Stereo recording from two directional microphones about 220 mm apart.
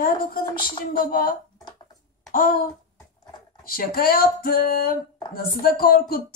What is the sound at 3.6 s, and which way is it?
Speech, 40° left (ahead or behind).